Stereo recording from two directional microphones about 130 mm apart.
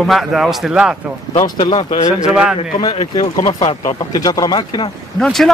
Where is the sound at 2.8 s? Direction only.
45° left (ahead or behind).